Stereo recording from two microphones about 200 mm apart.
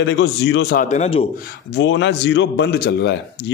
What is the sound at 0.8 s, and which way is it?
Speech, 35° left (ahead or behind).